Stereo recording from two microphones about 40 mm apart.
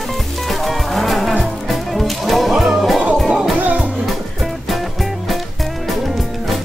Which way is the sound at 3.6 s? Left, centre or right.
Right.